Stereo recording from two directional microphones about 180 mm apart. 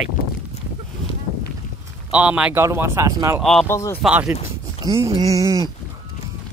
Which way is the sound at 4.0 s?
10° right (ahead or behind).